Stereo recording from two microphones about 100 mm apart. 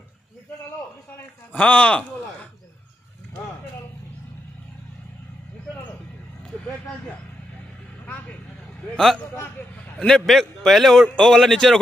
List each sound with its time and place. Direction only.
1.1 s a man's voice: 15° left (ahead or behind)
8.9 s a man's voice: 5° left (ahead or behind)
9.3 s a man's voice: 20° left (ahead or behind)
9.9 s a man's voice: 5° left (ahead or behind)